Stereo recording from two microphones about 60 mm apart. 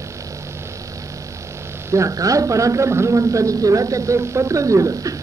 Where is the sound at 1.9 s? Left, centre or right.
Right.